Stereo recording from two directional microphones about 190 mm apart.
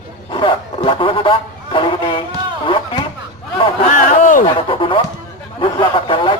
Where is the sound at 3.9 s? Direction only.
40° left (ahead or behind).